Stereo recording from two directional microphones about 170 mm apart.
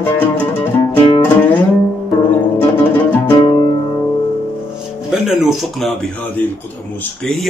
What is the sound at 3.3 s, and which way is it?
Music, 20° left (ahead or behind).